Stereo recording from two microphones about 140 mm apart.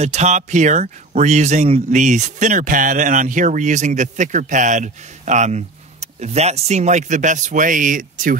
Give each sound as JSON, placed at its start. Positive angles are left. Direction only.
{"t": 0.0, "sound": "speech", "side_deg": -55}